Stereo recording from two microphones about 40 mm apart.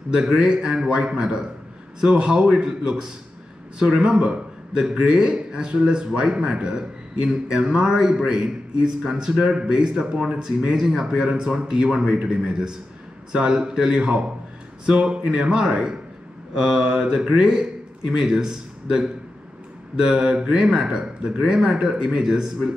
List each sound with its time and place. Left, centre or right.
0.2 s a man's voice: centre
4.2 s a man's voice: right
10.4 s speech: centre
11.1 s a man's voice: right
20.5 s speech: centre
20.8 s a man's voice: right